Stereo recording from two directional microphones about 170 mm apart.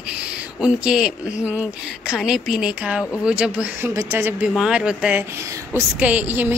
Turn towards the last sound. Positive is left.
turn(degrees=-10)  # may be behind; listen again after turning